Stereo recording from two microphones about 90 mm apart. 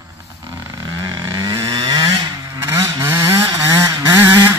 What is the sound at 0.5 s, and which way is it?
Vehicle, 45° right (ahead or behind).